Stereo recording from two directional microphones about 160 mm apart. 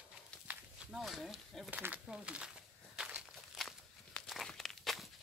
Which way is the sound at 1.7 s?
10° right (ahead or behind).